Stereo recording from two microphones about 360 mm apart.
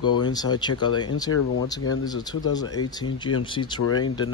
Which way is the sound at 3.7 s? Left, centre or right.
Left.